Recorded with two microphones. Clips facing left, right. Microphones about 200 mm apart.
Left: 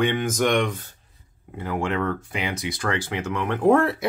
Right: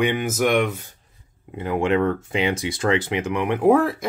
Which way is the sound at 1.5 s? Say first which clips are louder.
Right 5 dB; 20° right (ahead or behind).